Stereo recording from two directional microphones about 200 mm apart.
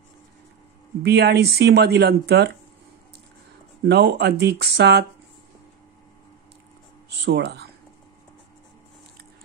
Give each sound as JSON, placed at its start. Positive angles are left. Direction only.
{"t": 1.0, "sound": "speech", "side_deg": -55}
{"t": 3.8, "sound": "speech", "side_deg": -55}
{"t": 7.1, "sound": "speech", "side_deg": -55}